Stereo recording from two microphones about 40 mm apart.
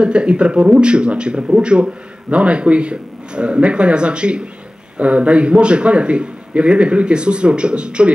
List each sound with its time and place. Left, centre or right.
0.0 s a man's voice: right